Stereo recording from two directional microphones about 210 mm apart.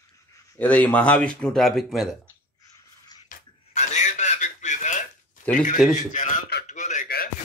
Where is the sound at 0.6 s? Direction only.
5° left (ahead or behind).